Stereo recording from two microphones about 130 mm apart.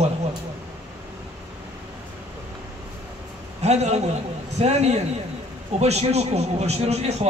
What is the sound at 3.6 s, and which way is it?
A man's voice, 55° right (ahead or behind).